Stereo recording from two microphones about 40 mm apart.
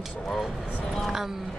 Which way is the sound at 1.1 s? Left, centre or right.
Centre.